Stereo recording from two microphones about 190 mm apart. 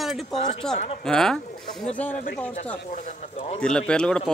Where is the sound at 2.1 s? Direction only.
45° left (ahead or behind).